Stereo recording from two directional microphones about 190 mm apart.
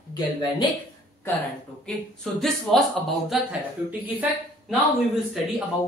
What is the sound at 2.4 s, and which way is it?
Speech, centre (ahead or behind).